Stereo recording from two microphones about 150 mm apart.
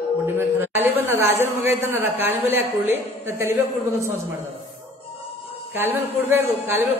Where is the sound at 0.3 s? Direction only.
15° right (ahead or behind).